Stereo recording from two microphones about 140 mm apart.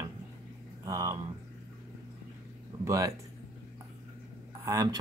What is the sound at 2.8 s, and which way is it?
Speech, 20° right (ahead or behind).